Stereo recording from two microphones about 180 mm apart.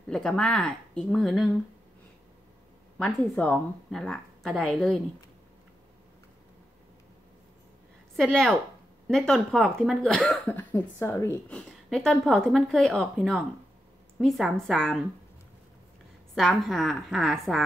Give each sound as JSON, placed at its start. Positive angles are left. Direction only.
{"t": 0.1, "sound": "speech", "side_deg": 0}
{"t": 3.0, "sound": "speech", "side_deg": 5}
{"t": 8.2, "sound": "speech", "side_deg": 5}
{"t": 10.7, "sound": "a woman's voice", "side_deg": 15}
{"t": 11.4, "sound": "speech", "side_deg": 5}
{"t": 16.3, "sound": "speech", "side_deg": 0}